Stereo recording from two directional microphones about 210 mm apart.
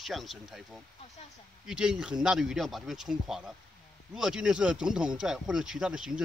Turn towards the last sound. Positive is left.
turn(degrees=-5)  # may be behind; listen again after turning